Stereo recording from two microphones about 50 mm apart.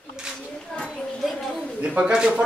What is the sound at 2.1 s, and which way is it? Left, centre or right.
Speech, centre.